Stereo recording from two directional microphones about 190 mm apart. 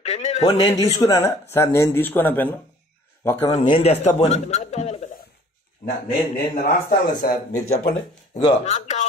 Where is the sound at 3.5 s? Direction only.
35° left (ahead or behind).